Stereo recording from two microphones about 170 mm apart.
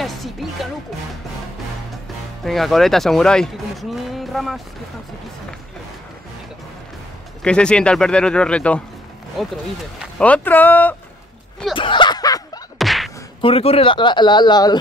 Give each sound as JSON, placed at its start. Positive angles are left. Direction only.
{"t": 0.0, "sound": "music", "side_deg": 0}
{"t": 2.4, "sound": "speech", "side_deg": 0}
{"t": 7.4, "sound": "speech", "side_deg": 5}
{"t": 11.7, "sound": "a sound", "side_deg": 30}
{"t": 12.7, "sound": "whack", "side_deg": 0}
{"t": 13.4, "sound": "speech", "side_deg": 35}